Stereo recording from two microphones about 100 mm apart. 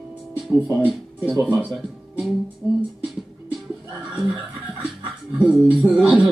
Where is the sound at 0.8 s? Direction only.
15° right (ahead or behind).